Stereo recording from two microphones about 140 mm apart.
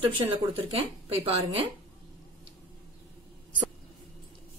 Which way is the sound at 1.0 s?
45° right (ahead or behind).